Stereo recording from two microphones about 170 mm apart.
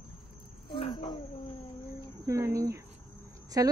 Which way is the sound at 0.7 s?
30° left (ahead or behind).